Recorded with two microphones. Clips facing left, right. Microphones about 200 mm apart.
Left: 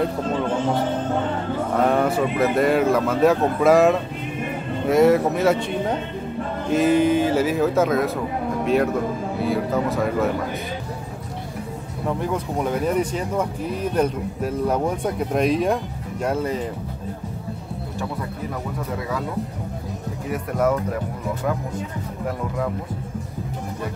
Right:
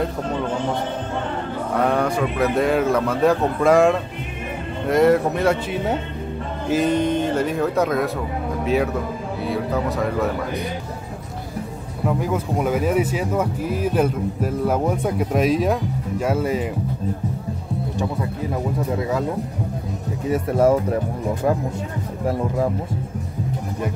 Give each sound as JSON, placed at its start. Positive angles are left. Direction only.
{"t": 1.8, "sound": "speech", "side_deg": 0}
{"t": 12.1, "sound": "speech", "side_deg": -5}
{"t": 20.2, "sound": "speech", "side_deg": -30}